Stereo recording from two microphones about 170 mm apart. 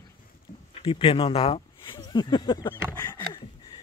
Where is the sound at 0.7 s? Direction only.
30° left (ahead or behind).